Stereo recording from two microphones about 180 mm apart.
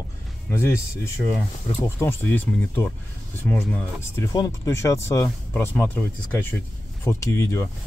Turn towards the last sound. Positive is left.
turn(degrees=15)  # may be behind; listen again after turning